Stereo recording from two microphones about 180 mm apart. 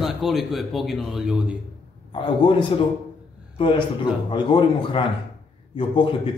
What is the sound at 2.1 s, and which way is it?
Speech, 25° left (ahead or behind).